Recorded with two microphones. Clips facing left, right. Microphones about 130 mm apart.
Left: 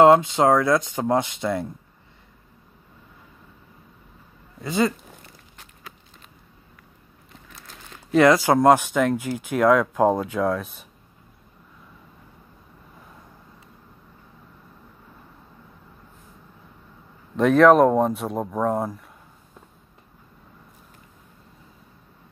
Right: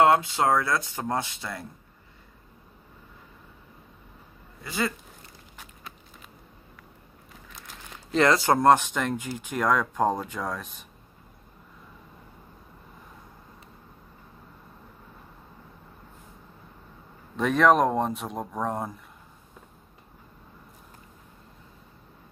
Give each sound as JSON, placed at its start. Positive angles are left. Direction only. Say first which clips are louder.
{"t": 0.0, "sound": "speech", "louder": "left 6 dB", "side_deg": 25}
{"t": 4.6, "sound": "speech", "louder": "left 7 dB", "side_deg": 20}
{"t": 8.1, "sound": "speech", "louder": "left 5 dB", "side_deg": 10}
{"t": 17.4, "sound": "speech", "louder": "left 6 dB", "side_deg": 5}